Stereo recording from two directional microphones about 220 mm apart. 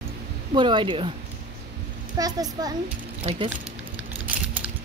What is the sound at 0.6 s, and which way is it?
Speech, 20° right (ahead or behind).